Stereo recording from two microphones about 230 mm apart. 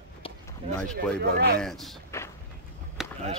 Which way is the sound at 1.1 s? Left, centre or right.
Right.